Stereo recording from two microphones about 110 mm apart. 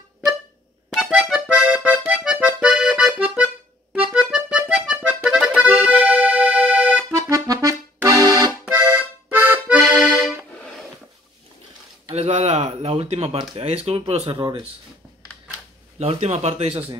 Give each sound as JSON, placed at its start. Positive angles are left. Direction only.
{"t": 0.8, "sound": "accordion", "side_deg": 0}
{"t": 7.1, "sound": "accordion", "side_deg": -30}
{"t": 8.6, "sound": "accordion", "side_deg": -20}
{"t": 10.5, "sound": "music", "side_deg": 10}
{"t": 12.1, "sound": "a sound", "side_deg": -70}
{"t": 13.6, "sound": "speech", "side_deg": -70}
{"t": 14.3, "sound": "speech", "side_deg": -45}
{"t": 16.0, "sound": "speech", "side_deg": -75}